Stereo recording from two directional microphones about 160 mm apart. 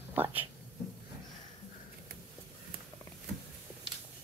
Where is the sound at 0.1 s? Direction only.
10° right (ahead or behind).